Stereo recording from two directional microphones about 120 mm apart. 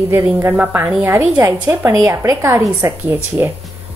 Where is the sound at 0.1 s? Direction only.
20° right (ahead or behind).